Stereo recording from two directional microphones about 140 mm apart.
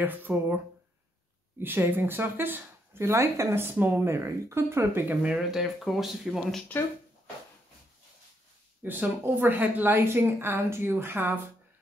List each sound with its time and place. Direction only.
0.0 s speech: 15° right (ahead or behind)
1.6 s speech: 15° right (ahead or behind)
8.8 s speech: 15° right (ahead or behind)